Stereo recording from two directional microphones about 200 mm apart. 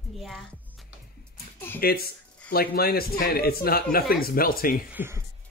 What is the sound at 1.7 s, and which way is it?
Speech, 50° left (ahead or behind).